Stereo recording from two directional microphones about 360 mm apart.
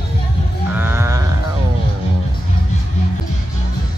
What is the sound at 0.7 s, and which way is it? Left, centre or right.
Sheep, centre.